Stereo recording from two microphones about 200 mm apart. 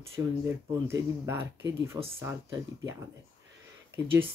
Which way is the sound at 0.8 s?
10° right (ahead or behind).